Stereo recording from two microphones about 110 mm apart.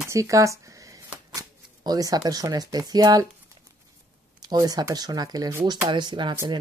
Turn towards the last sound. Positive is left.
turn(degrees=-45)  # may be behind; listen again after turning